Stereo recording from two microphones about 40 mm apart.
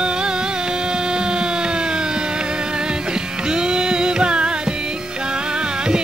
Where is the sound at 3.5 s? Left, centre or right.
Centre.